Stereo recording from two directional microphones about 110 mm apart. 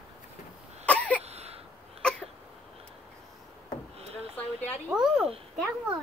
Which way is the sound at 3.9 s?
65° right (ahead or behind).